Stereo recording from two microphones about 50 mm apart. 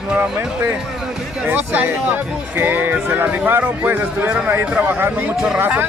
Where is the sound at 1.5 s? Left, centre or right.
Right.